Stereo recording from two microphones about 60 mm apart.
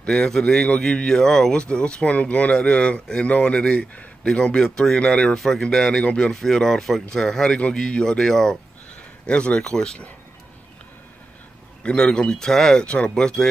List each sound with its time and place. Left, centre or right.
0.0 s speech: centre
9.2 s speech: centre
11.8 s speech: centre